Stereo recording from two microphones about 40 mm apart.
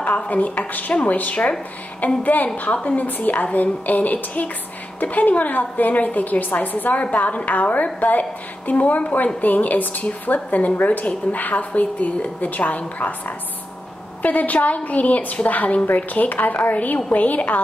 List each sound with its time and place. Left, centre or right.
0.0 s a woman's voice: left
2.7 s a woman's voice: left
3.0 s a woman's voice: left
14.2 s a woman's voice: left